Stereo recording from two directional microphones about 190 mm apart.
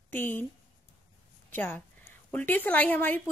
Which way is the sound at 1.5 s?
10° left (ahead or behind).